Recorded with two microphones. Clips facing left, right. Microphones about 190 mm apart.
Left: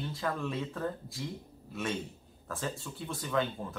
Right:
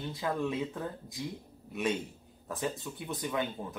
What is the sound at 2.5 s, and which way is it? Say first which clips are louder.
Speech: right 2 dB; 20° right (ahead or behind).